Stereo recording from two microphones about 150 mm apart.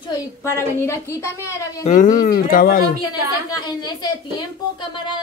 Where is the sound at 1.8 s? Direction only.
55° left (ahead or behind); by 2.8 s 70° left (ahead or behind).